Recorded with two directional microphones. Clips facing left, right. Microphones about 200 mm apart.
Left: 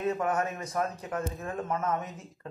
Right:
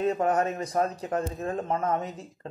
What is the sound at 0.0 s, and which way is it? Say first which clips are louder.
A man's voice: right 4 dB; 35° right (ahead or behind).